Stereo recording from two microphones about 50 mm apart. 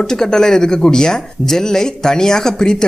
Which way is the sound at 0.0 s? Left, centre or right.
Centre.